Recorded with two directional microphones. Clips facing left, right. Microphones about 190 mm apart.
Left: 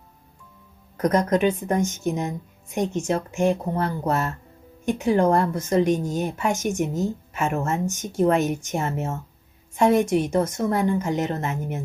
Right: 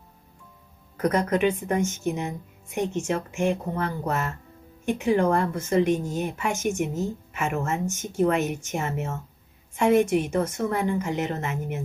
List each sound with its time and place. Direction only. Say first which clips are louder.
1.0 s speech: left 2 dB; 40° left (ahead or behind)